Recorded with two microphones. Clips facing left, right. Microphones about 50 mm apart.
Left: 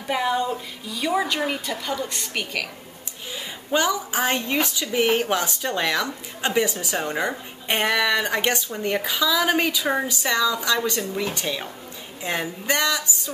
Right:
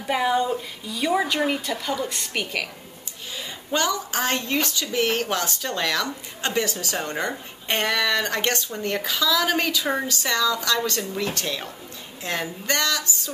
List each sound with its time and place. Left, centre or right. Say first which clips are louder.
0.1 s a woman's voice: right 1 dB; centre
3.3 s a woman's voice: left 2 dB; centre